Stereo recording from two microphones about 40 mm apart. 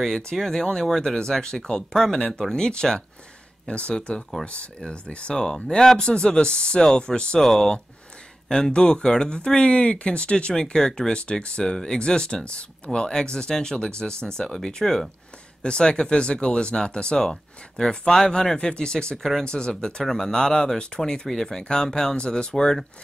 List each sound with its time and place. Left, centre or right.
0.0 s speech: centre
2.0 s speech: centre
3.6 s speech: left
7.3 s speech: centre
8.7 s speech: left
10.5 s speech: centre
19.1 s speech: centre
19.4 s speech: left